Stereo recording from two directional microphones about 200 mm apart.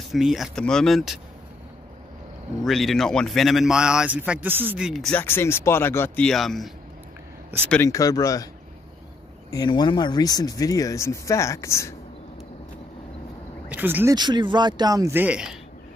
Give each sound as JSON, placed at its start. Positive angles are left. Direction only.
{"t": 0.1, "sound": "speech", "side_deg": 0}
{"t": 2.6, "sound": "speech", "side_deg": 0}
{"t": 7.7, "sound": "speech", "side_deg": 15}
{"t": 9.5, "sound": "speech", "side_deg": 20}
{"t": 13.7, "sound": "speech", "side_deg": -10}
{"t": 14.1, "sound": "speech", "side_deg": -20}